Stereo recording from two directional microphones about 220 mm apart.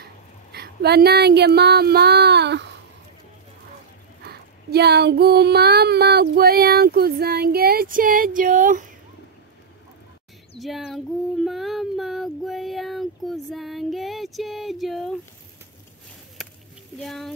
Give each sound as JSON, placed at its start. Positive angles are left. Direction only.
{"t": 0.0, "sound": "speech", "side_deg": -45}
{"t": 4.2, "sound": "child singing", "side_deg": -45}
{"t": 10.6, "sound": "child singing", "side_deg": 0}
{"t": 17.0, "sound": "child singing", "side_deg": 0}